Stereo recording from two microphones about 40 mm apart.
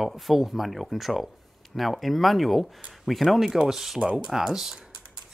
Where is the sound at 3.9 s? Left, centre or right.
Right.